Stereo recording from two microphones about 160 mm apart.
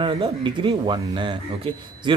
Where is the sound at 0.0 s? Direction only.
30° right (ahead or behind).